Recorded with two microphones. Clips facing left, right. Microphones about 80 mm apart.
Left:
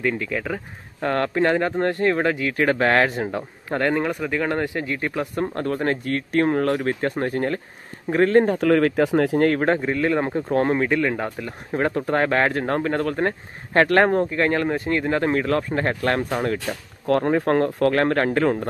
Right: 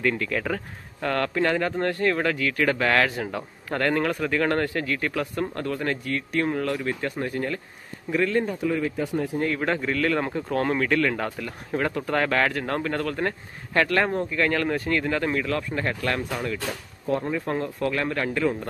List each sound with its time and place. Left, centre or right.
0.0 s speech: centre
1.0 s speech: left
8.5 s speech: left
9.8 s speech: left
13.7 s speech: left
17.1 s speech: left